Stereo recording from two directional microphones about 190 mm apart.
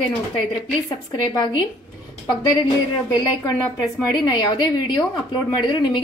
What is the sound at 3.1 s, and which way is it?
A woman's voice, 20° left (ahead or behind).